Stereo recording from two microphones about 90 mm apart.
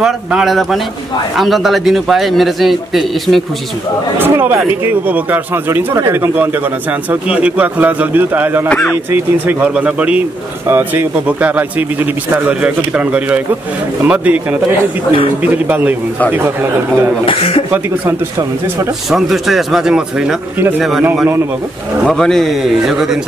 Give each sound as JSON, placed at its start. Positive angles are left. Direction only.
{"t": 0.0, "sound": "a man's voice", "side_deg": -5}
{"t": 4.2, "sound": "speech", "side_deg": -25}
{"t": 7.1, "sound": "speech", "side_deg": -15}
{"t": 8.6, "sound": "speech", "side_deg": 15}
{"t": 9.1, "sound": "a man's voice", "side_deg": -20}
{"t": 15.4, "sound": "a man's voice", "side_deg": -20}
{"t": 17.3, "sound": "speech", "side_deg": 90}
{"t": 19.0, "sound": "a man's voice", "side_deg": 0}
{"t": 22.0, "sound": "a man's voice", "side_deg": 5}